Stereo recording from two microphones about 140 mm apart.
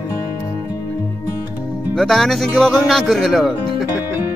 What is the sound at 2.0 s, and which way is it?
Speech, centre (ahead or behind).